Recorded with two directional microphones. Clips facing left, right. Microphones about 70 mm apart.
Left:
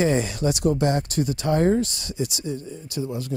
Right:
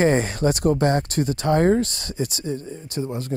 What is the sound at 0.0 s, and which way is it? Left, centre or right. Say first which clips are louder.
Speech: right 3 dB; right.